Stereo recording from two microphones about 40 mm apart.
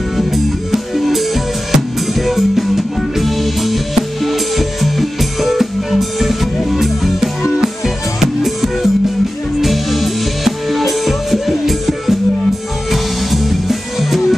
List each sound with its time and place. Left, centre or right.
0.3 s music: centre